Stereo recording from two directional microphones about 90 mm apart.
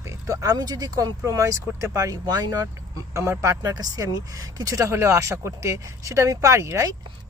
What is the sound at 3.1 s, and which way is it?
Speech, 30° right (ahead or behind).